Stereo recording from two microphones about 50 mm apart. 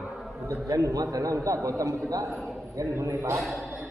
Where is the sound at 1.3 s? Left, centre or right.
Right.